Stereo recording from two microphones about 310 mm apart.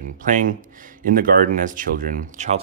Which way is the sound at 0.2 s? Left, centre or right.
Right.